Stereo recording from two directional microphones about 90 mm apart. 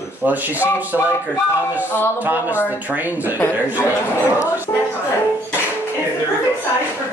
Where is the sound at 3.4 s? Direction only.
30° left (ahead or behind).